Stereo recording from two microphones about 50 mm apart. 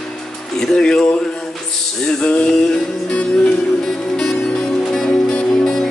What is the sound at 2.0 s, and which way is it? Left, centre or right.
Music, centre.